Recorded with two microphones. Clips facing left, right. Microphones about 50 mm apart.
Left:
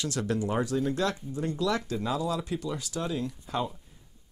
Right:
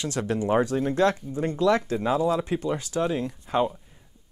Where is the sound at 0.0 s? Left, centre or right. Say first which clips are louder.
Right 3 dB; right.